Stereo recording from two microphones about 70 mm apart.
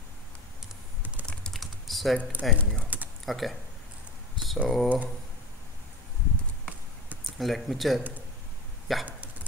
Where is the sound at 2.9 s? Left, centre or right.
Right.